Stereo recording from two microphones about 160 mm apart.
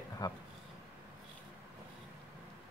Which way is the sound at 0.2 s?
25° left (ahead or behind).